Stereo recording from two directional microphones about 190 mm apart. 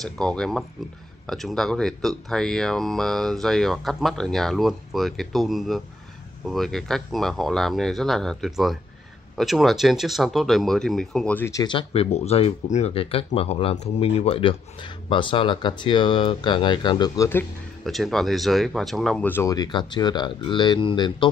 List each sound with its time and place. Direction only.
0.0 s speech: 5° left (ahead or behind)
11.6 s speech: 30° left (ahead or behind)
17.8 s speech: centre (ahead or behind); by 21.3 s 25° left (ahead or behind)